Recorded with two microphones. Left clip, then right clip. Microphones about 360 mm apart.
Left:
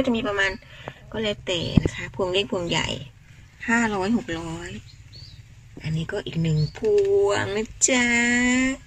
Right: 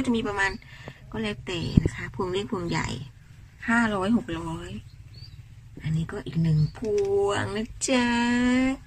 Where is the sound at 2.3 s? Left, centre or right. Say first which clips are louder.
Left 7 dB; centre.